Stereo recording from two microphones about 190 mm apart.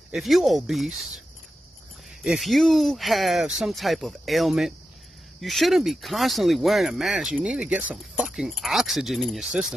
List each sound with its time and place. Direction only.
0.1 s speech: centre (ahead or behind)
2.2 s speech: centre (ahead or behind)